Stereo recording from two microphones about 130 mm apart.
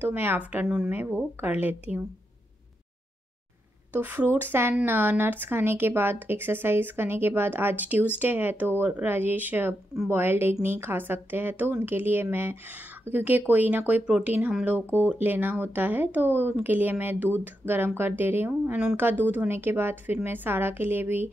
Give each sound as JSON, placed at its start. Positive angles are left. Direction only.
{"t": 0.0, "sound": "speech", "side_deg": -15}
{"t": 3.9, "sound": "speech", "side_deg": -15}